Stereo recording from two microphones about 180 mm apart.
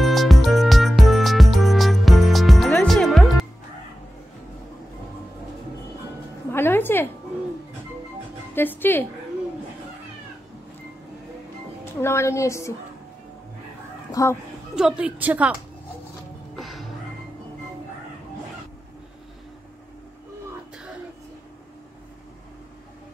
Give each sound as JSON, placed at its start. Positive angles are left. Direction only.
{"t": 0.0, "sound": "music", "side_deg": 0}
{"t": 6.5, "sound": "a sound", "side_deg": 10}
{"t": 8.5, "sound": "music", "side_deg": 10}
{"t": 11.8, "sound": "a sound", "side_deg": 15}
{"t": 14.2, "sound": "speech", "side_deg": 20}
{"t": 14.8, "sound": "a woman's voice", "side_deg": -5}
{"t": 16.5, "sound": "music", "side_deg": 0}